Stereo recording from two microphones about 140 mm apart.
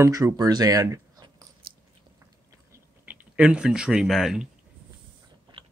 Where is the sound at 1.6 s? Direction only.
90° right.